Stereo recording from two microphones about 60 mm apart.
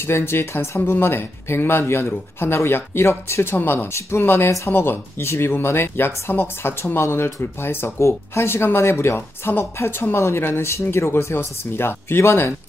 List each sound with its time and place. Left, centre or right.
0.0 s speech: left
3.5 s speech: left